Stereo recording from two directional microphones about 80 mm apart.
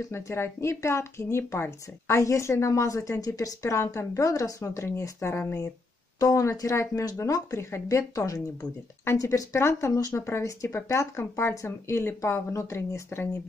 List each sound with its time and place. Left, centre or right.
0.1 s speech: left
6.1 s speech: left